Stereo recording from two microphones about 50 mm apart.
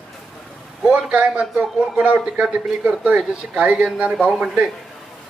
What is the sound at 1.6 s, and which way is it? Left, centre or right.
Speech, centre.